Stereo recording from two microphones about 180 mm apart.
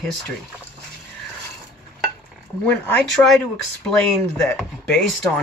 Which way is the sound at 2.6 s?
10° left (ahead or behind).